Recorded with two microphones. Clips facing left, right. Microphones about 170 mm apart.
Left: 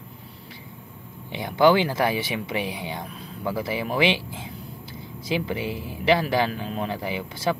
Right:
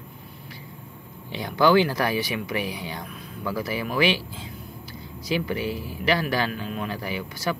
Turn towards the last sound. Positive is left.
turn(degrees=25)  # may be behind; listen again after turning